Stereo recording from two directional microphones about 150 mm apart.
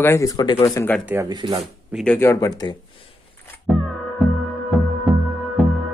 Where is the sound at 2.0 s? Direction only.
15° left (ahead or behind).